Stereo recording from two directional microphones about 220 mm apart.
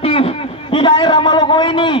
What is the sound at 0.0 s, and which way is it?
A man's voice, 25° left (ahead or behind).